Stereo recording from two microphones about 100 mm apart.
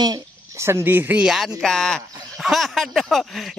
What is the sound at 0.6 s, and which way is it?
Speech, 25° right (ahead or behind).